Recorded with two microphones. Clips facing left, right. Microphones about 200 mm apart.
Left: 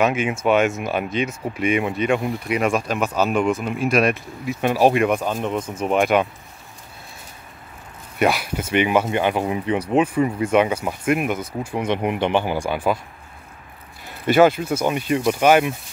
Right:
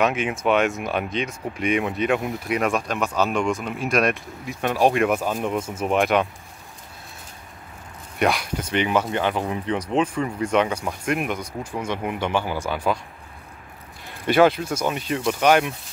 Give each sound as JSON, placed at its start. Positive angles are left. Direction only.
{"t": 0.0, "sound": "speech", "side_deg": 0}
{"t": 8.2, "sound": "speech", "side_deg": 5}
{"t": 11.9, "sound": "speech", "side_deg": 20}
{"t": 14.2, "sound": "speech", "side_deg": 5}